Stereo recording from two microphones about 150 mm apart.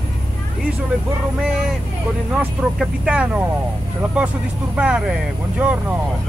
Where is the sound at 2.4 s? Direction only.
5° right (ahead or behind).